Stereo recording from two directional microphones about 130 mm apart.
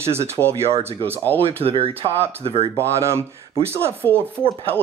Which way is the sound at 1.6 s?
45° right (ahead or behind).